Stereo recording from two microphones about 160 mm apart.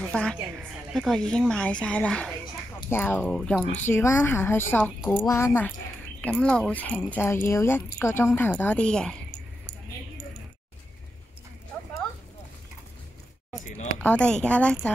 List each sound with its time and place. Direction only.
0.1 s a woman's voice: 5° left (ahead or behind)
3.2 s speech: 5° left (ahead or behind)
3.8 s speech: 15° left (ahead or behind)
6.2 s speech: 5° left (ahead or behind)
13.9 s speech: 10° left (ahead or behind)